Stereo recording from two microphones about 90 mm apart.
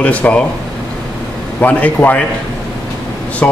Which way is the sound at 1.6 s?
20° left (ahead or behind).